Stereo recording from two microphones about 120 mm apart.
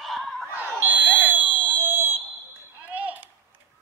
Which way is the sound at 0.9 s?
15° right (ahead or behind).